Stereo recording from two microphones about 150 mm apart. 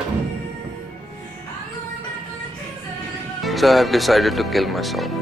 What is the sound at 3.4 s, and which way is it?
Speech, centre (ahead or behind).